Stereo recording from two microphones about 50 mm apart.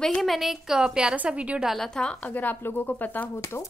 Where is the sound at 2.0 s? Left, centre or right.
Left.